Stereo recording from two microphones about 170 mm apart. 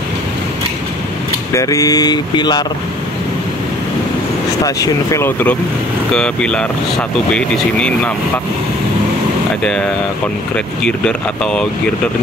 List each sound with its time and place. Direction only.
1.5 s speech: 20° left (ahead or behind)
4.6 s speech: 20° left (ahead or behind); by 6.6 s 5° left (ahead or behind)
9.6 s speech: 5° left (ahead or behind)